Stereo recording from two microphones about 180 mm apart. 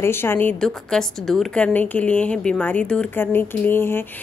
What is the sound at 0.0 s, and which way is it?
A woman's voice, 15° left (ahead or behind).